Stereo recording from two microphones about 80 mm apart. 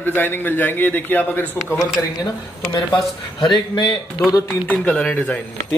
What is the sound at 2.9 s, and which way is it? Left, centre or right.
Speech, left.